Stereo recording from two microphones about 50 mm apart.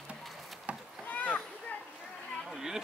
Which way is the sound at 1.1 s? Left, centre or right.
Left.